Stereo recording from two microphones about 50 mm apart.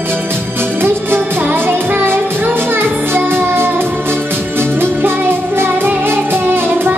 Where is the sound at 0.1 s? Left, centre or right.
Right.